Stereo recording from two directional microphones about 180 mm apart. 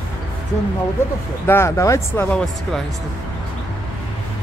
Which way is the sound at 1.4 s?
15° left (ahead or behind).